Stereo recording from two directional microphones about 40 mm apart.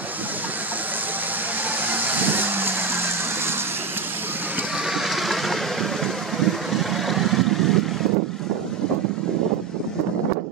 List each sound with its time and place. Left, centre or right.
1.9 s vehicle: right
4.9 s vehicle: centre